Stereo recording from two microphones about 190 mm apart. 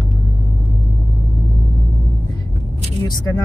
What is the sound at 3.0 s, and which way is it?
Speech, 20° left (ahead or behind).